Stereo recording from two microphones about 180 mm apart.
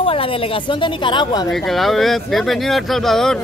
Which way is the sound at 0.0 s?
30° left (ahead or behind).